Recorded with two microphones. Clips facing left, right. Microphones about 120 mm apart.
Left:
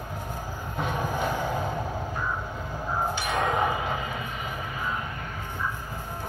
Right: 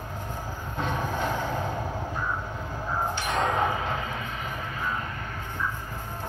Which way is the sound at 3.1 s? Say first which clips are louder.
Right 1 dB; 15° left (ahead or behind).